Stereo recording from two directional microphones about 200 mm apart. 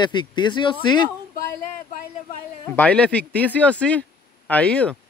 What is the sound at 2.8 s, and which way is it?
Speech, 5° left (ahead or behind).